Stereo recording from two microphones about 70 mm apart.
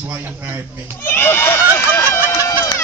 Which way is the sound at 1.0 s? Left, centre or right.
Left.